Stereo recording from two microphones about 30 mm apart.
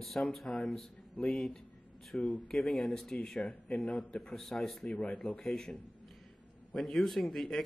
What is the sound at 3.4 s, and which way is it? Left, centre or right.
Speech, left.